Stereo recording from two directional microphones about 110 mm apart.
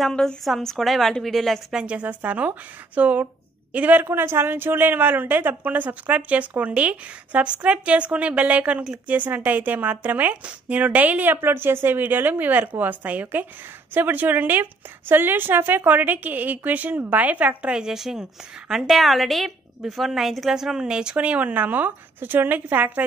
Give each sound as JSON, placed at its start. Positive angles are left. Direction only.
{"t": 0.0, "sound": "a woman's voice", "side_deg": 5}